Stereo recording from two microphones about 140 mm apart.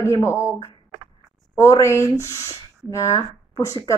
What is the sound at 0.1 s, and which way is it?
A woman's voice, 20° left (ahead or behind).